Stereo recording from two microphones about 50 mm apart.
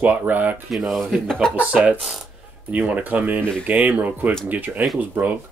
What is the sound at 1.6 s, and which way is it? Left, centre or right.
Speech, right.